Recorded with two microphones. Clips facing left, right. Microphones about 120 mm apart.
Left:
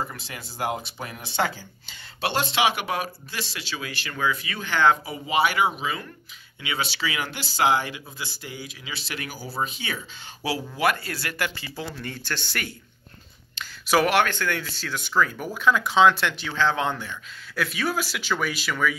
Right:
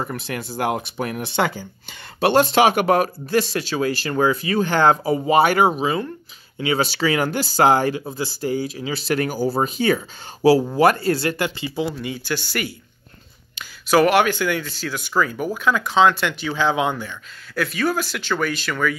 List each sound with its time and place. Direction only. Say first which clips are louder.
0.0 s speech: right 6 dB; 60° right (ahead or behind); by 18.9 s 5° left (ahead or behind)